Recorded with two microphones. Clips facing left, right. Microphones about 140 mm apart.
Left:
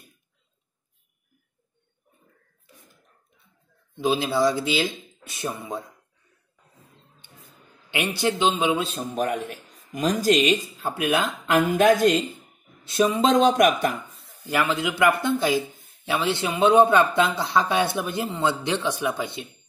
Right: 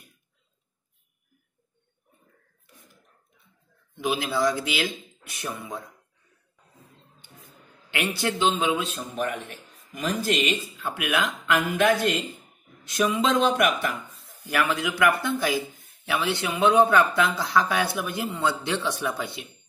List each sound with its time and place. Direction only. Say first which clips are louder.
4.0 s speech: left 3 dB; 25° left (ahead or behind)
7.9 s speech: left 3 dB; 25° left (ahead or behind)
9.1 s speech: left 5 dB; 40° left (ahead or behind)
14.4 s speech: left 2 dB; 25° left (ahead or behind)